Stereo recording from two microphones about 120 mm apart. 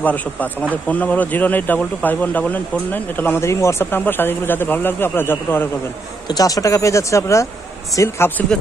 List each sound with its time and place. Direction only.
0.0 s speech: 15° left (ahead or behind)
6.2 s speech: 30° left (ahead or behind)